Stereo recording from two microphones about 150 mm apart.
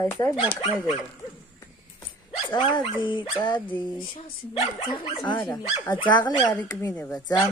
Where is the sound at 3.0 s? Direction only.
30° left (ahead or behind).